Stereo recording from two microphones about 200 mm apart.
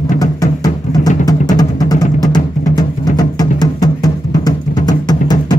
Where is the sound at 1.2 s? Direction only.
20° left (ahead or behind).